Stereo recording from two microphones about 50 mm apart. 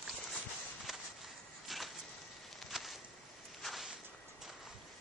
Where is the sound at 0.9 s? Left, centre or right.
Centre.